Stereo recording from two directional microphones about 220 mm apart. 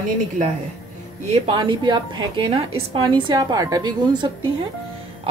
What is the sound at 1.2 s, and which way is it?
A woman's voice, 25° right (ahead or behind).